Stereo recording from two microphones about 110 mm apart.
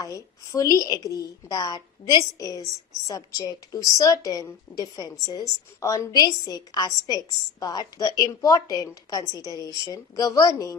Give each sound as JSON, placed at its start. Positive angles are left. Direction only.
{"t": 0.0, "sound": "a woman's voice", "side_deg": 30}